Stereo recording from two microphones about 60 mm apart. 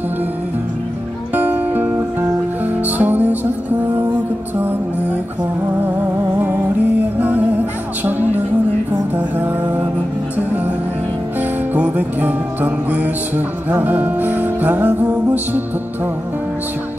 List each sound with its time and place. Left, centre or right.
1.3 s music: right
7.2 s music: right
11.7 s music: right